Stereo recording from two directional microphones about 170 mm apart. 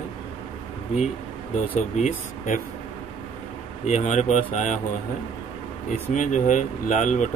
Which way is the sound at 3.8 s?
45° left (ahead or behind).